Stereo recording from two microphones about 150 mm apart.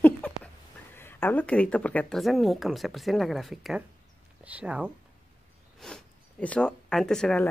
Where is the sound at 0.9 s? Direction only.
15° left (ahead or behind); by 4.9 s 10° right (ahead or behind).